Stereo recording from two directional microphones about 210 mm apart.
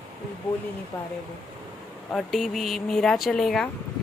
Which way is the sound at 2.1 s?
Centre (ahead or behind).